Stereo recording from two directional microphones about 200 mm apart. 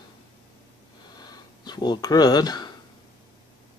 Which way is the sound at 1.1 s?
20° left (ahead or behind).